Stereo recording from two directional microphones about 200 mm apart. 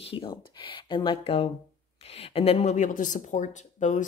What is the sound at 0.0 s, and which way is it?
A woman's voice, 25° left (ahead or behind).